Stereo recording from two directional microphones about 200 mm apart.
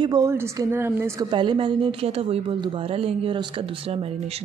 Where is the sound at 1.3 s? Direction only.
25° right (ahead or behind).